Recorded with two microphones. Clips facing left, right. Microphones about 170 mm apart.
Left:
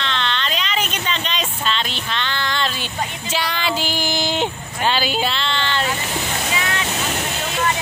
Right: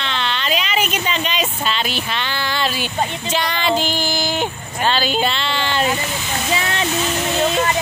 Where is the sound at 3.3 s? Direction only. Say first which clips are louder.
Right 3 dB; 5° left (ahead or behind).